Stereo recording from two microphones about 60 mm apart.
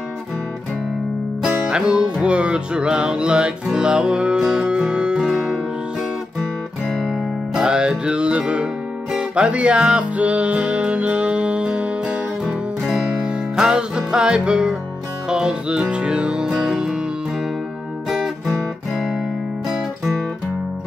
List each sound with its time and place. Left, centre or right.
1.7 s music: centre
6.9 s music: centre
13.6 s music: centre
18.9 s music: centre